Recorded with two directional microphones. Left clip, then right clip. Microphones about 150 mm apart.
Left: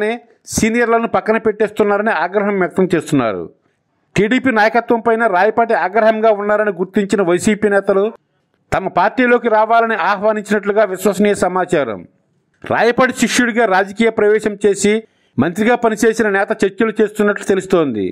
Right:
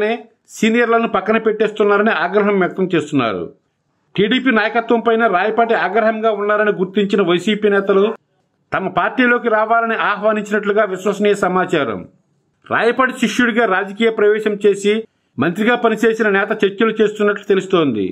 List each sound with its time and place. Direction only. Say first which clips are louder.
0.0 s a man's voice: even; 40° left (ahead or behind)